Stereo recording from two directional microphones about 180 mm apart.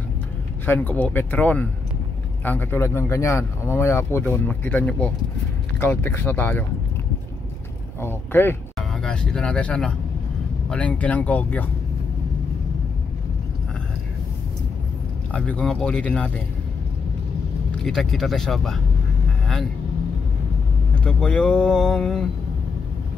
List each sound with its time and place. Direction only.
0.7 s speech: 10° left (ahead or behind)
8.0 s speech: 10° left (ahead or behind)
15.3 s speech: 5° left (ahead or behind)
17.6 s speech: centre (ahead or behind)
21.0 s speech: 5° left (ahead or behind)